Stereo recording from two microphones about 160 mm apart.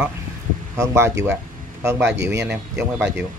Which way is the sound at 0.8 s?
15° right (ahead or behind).